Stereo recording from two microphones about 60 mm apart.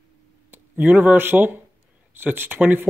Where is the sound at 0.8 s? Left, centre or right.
Right.